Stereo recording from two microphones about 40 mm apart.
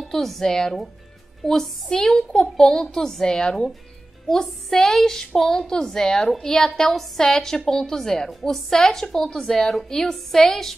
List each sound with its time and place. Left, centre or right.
0.1 s a woman's voice: centre